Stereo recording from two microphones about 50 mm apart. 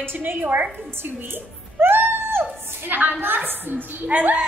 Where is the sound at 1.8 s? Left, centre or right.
Right.